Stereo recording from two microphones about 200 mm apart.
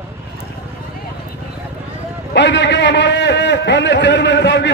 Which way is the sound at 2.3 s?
60° left (ahead or behind).